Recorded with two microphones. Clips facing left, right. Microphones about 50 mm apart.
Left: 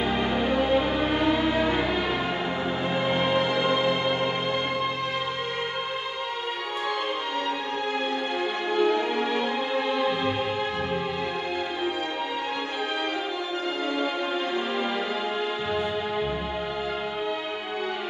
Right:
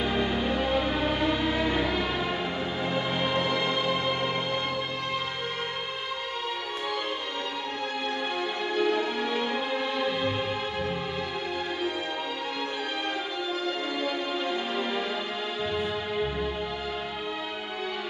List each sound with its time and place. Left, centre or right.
0.0 s music: left
8.6 s music: left